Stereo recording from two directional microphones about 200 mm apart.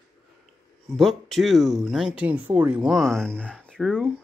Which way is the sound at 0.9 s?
Centre (ahead or behind).